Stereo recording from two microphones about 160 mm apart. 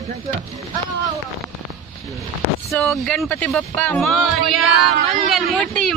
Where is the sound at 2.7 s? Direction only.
15° left (ahead or behind).